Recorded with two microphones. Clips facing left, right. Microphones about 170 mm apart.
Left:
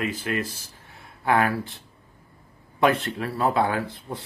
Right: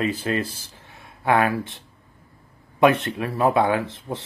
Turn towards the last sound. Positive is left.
turn(degrees=-20)  # may be behind; listen again after turning